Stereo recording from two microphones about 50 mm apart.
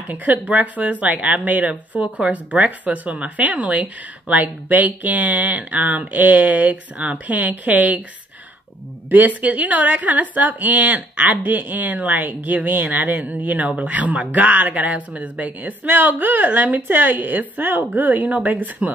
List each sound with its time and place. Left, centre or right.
0.1 s speech: right
2.3 s speech: right
9.1 s speech: right